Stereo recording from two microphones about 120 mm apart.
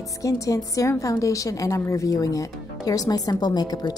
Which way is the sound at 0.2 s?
30° left (ahead or behind).